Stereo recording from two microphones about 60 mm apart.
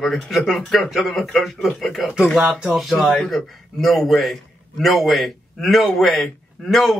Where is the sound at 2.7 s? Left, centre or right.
Centre.